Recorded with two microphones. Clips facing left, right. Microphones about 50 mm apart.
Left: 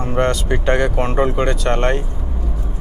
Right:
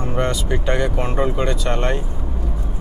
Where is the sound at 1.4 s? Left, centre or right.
Left.